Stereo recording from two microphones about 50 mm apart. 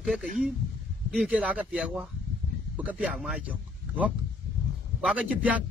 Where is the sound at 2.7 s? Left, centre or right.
Right.